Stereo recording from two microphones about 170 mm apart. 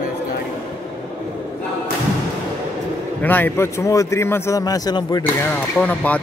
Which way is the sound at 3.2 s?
10° left (ahead or behind).